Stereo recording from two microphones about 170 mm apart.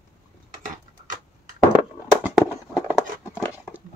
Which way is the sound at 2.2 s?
10° right (ahead or behind).